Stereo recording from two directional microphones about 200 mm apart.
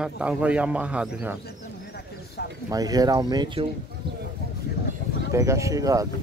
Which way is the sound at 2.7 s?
20° right (ahead or behind).